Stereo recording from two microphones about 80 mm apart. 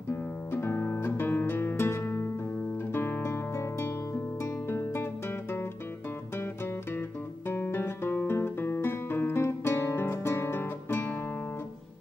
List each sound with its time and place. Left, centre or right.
0.1 s music: left
6.3 s guitar: left